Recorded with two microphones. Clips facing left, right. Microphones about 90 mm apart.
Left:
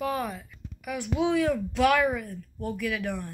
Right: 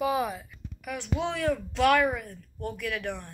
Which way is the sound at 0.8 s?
5° left (ahead or behind).